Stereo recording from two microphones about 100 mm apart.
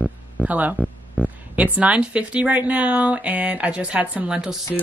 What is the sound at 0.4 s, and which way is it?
Speech, 15° right (ahead or behind).